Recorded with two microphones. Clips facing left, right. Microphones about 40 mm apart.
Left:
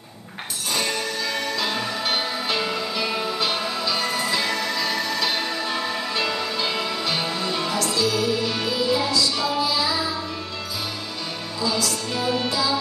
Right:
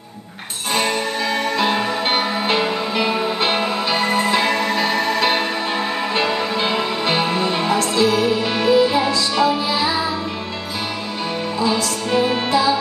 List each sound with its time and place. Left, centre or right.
0.7 s music: right
11.6 s music: right